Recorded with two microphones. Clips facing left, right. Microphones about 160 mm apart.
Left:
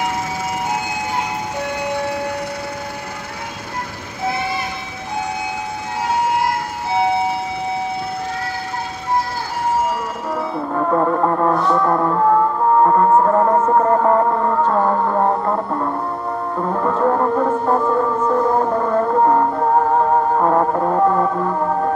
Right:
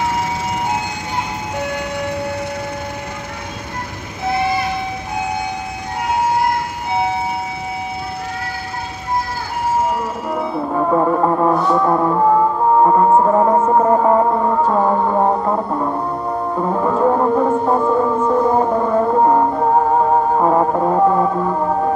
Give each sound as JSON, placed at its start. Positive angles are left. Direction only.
{"t": 10.3, "sound": "music", "side_deg": -10}